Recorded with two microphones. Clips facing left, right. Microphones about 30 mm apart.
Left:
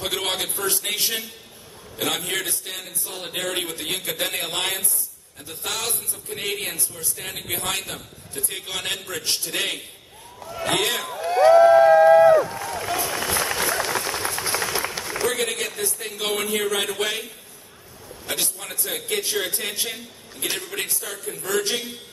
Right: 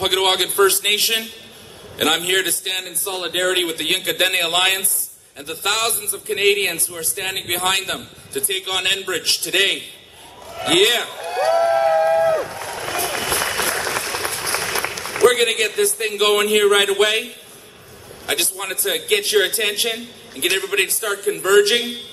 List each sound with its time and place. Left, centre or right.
0.0 s a man's voice: right
11.4 s a sound: centre
12.5 s a sound: right
13.5 s applause: right
14.4 s applause: right
15.2 s a man's voice: right